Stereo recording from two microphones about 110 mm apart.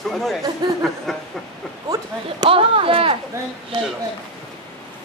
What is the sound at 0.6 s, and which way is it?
Speech, 40° right (ahead or behind).